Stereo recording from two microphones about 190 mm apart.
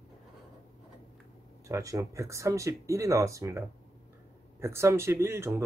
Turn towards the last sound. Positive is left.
turn(degrees=-10)  # may be behind; listen again after turning